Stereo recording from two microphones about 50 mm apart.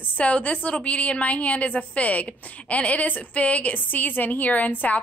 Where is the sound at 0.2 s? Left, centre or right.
Left.